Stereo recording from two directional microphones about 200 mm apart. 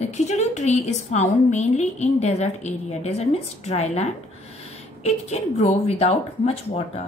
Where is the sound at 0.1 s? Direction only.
35° left (ahead or behind).